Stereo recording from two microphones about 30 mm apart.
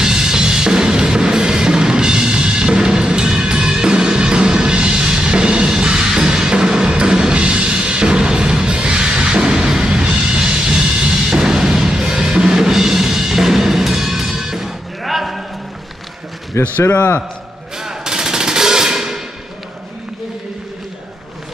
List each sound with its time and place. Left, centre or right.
0.0 s music: centre
11.2 s drum kit: right
12.6 s music: centre
15.0 s clip-clop: centre
17.7 s machine gun: centre